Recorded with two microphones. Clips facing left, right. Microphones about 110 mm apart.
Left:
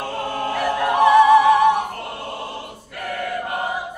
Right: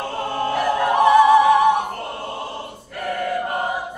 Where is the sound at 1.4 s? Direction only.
5° right (ahead or behind).